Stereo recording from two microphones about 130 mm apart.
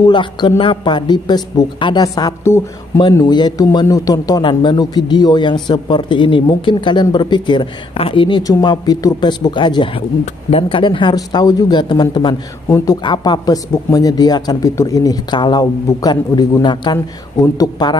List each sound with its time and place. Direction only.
0.0 s speech: 35° left (ahead or behind)